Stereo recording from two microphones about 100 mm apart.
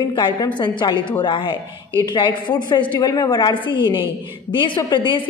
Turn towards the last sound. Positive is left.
turn(degrees=55)  # may be behind; listen again after turning